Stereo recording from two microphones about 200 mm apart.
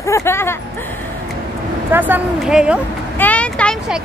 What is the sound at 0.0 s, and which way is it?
Speech, 15° left (ahead or behind).